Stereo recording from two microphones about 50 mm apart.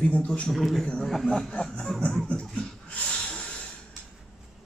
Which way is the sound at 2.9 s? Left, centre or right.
Centre.